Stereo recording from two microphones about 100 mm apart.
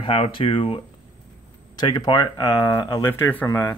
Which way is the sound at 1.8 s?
45° left (ahead or behind).